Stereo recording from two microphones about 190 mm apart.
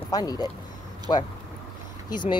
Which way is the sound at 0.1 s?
20° left (ahead or behind).